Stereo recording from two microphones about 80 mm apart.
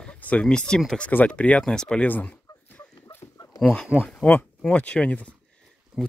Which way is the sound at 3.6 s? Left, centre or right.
Centre.